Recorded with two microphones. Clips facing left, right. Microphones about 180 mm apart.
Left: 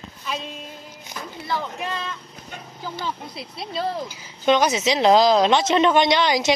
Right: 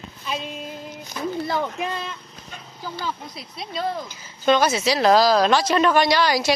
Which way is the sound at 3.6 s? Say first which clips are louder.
Left 1 dB; 5° left (ahead or behind).